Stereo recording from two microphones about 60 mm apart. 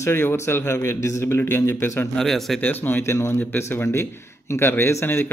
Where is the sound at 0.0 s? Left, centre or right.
Left.